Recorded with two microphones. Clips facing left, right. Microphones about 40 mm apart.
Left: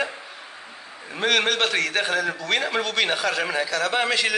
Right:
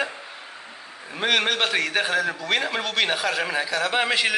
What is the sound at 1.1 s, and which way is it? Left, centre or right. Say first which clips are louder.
A man's voice: left 1 dB; centre.